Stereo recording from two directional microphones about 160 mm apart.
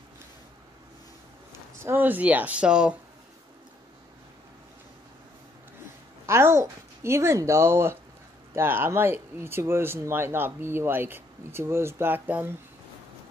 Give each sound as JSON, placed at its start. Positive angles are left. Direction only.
{"t": 1.8, "sound": "speech", "side_deg": -15}
{"t": 6.2, "sound": "speech", "side_deg": -15}